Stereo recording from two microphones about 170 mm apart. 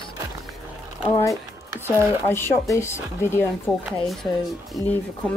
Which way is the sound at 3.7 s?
Centre (ahead or behind).